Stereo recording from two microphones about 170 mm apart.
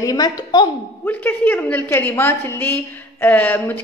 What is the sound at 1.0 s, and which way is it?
A woman's voice, 10° left (ahead or behind).